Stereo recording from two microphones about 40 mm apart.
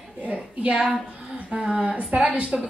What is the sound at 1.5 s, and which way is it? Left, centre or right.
Speech, centre.